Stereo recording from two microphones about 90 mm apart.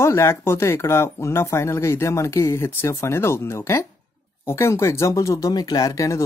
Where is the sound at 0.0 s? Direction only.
30° left (ahead or behind).